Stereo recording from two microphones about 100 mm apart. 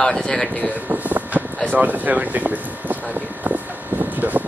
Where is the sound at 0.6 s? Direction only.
15° right (ahead or behind).